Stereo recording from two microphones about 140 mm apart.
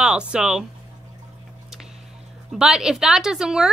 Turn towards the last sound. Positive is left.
turn(degrees=-5)  # may be behind; listen again after turning